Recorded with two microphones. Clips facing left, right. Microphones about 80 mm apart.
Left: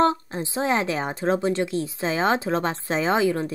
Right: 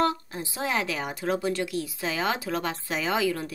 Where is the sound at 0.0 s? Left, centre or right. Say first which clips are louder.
Left 5 dB; left.